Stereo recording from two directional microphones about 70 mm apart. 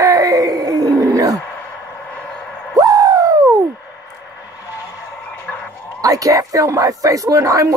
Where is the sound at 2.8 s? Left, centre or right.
Right.